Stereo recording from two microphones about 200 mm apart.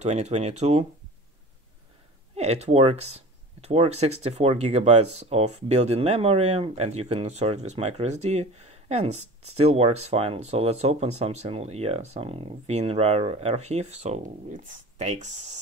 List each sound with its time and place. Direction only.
0.0 s speech: 35° right (ahead or behind)
2.3 s speech: 30° right (ahead or behind)